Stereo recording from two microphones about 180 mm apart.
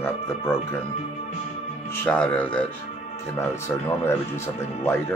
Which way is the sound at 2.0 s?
5° left (ahead or behind).